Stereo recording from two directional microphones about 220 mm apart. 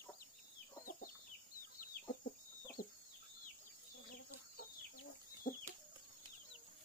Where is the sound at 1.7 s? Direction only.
40° left (ahead or behind).